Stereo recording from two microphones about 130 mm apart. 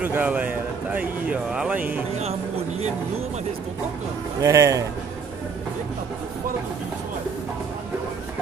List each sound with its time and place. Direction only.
0.0 s speech: 10° right (ahead or behind)
4.4 s speech: 25° right (ahead or behind)